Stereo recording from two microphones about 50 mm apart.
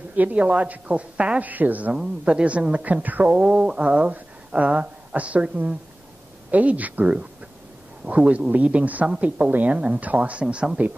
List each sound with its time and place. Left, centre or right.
0.1 s a woman's voice: right
1.4 s a woman's voice: right
2.0 s a woman's voice: right
3.3 s a woman's voice: right
9.5 s a woman's voice: right; by 10.8 s centre